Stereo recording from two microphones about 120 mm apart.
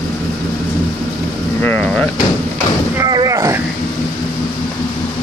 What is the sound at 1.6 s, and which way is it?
Vehicle, 10° left (ahead or behind).